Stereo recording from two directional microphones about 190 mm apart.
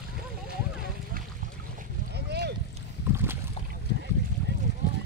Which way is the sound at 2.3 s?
60° right (ahead or behind).